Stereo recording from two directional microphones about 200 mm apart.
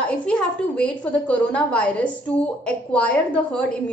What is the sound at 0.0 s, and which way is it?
A woman's voice, 5° left (ahead or behind).